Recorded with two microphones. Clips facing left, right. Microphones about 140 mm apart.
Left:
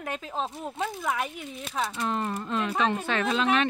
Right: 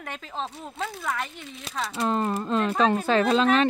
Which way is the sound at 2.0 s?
35° right (ahead or behind).